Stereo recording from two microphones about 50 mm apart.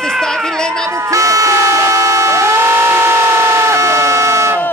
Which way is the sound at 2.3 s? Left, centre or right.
Right.